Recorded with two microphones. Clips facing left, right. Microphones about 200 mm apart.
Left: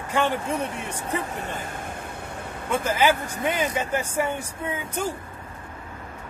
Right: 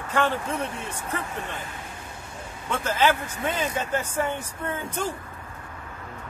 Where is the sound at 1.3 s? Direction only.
40° left (ahead or behind).